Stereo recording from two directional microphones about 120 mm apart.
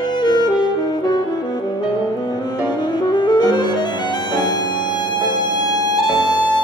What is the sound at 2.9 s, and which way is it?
Music, 35° left (ahead or behind).